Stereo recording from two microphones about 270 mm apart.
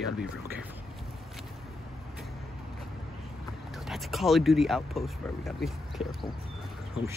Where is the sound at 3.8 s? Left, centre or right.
Centre.